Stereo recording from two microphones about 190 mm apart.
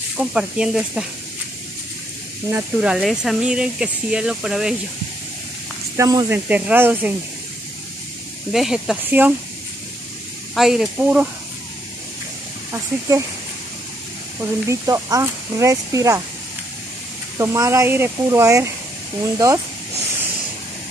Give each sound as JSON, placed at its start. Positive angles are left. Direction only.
{"t": 0.2, "sound": "speech", "side_deg": -5}
{"t": 2.5, "sound": "speech", "side_deg": -5}
{"t": 5.9, "sound": "speech", "side_deg": -15}
{"t": 8.5, "sound": "speech", "side_deg": 0}
{"t": 10.5, "sound": "speech", "side_deg": 0}
{"t": 14.4, "sound": "speech", "side_deg": -15}
{"t": 17.4, "sound": "speech", "side_deg": -15}